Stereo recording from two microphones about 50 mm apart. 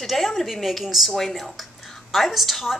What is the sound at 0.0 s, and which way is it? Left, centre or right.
A woman's voice, centre.